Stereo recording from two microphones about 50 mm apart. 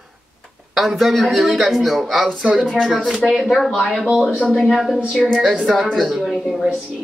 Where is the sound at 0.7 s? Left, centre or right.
Centre.